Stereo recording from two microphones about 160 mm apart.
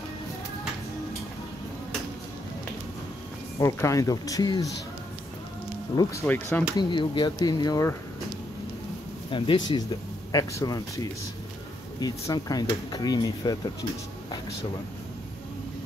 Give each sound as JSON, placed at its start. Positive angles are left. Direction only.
{"t": 3.5, "sound": "speech", "side_deg": 20}
{"t": 6.2, "sound": "speech", "side_deg": 10}
{"t": 6.8, "sound": "speech", "side_deg": 30}
{"t": 9.3, "sound": "speech", "side_deg": 30}